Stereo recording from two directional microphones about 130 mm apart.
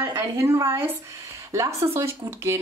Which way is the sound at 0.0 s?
20° right (ahead or behind).